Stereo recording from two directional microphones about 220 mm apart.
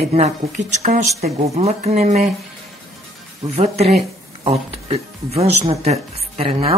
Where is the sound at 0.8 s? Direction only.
40° right (ahead or behind).